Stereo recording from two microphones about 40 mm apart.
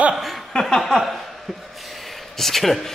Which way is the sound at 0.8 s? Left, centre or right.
Centre.